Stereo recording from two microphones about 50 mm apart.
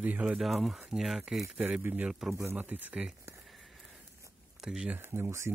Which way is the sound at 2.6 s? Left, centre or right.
Right.